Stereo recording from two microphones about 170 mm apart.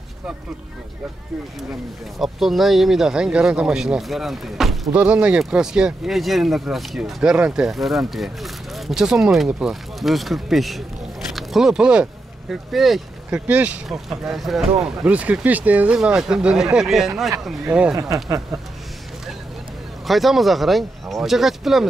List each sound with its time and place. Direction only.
2.1 s speech: centre (ahead or behind)
17.9 s speech: 20° right (ahead or behind)
20.1 s speech: centre (ahead or behind)